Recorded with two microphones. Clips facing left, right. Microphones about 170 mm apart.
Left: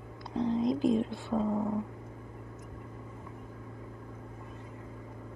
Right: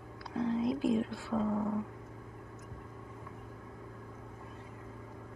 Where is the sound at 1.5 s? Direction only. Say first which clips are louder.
Left 2 dB; 15° left (ahead or behind).